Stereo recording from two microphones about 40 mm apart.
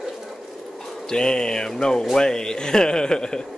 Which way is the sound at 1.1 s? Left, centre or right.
Centre.